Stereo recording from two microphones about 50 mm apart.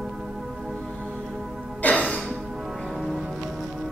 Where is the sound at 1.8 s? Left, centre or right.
Left.